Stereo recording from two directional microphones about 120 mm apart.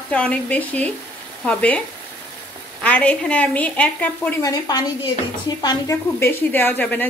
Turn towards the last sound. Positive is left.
turn(degrees=15)  # may be behind; listen again after turning